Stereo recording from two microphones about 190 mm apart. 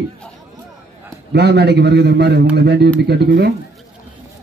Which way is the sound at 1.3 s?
60° right (ahead or behind).